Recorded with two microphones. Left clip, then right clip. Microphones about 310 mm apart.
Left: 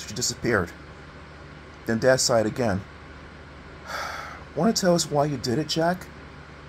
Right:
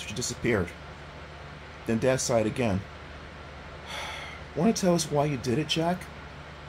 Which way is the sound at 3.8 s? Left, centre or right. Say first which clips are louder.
Left 5 dB; centre.